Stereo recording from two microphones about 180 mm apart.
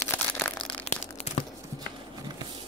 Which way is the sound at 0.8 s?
35° left (ahead or behind).